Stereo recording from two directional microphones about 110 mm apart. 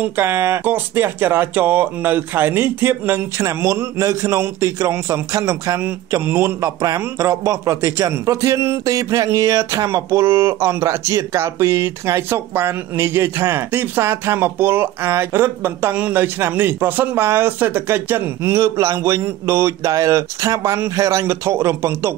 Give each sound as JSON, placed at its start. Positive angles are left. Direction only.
{"t": 0.0, "sound": "speech", "side_deg": -20}
{"t": 3.4, "sound": "speech", "side_deg": -30}